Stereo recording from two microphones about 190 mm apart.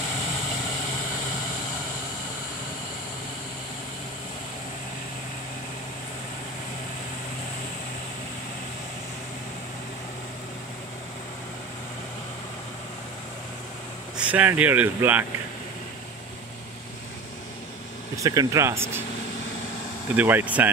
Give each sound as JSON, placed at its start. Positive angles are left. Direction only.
{"t": 14.1, "sound": "speech", "side_deg": -5}
{"t": 18.1, "sound": "speech", "side_deg": -15}
{"t": 20.2, "sound": "speech", "side_deg": -10}